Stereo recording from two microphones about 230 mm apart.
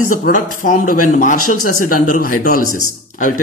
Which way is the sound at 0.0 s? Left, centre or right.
Left.